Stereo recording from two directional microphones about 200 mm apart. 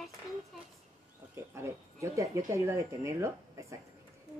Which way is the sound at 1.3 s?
15° right (ahead or behind).